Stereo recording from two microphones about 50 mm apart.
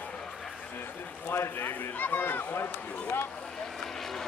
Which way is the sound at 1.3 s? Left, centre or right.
Left.